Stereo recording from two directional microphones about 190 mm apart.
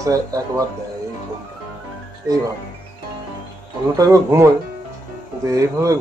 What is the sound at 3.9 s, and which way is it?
Speech, 15° right (ahead or behind).